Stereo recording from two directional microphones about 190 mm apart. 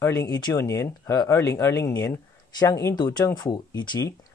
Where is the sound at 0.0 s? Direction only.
20° left (ahead or behind).